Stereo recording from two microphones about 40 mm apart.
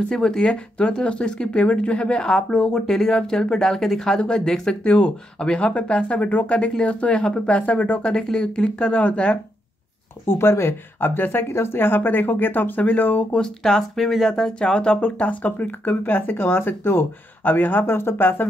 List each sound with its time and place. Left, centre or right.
0.1 s speech: centre
4.8 s speech: left
8.1 s speech: centre
10.2 s speech: left
13.4 s speech: centre; by 16.0 s left
16.0 s speech: left
17.5 s speech: left
17.9 s speech: left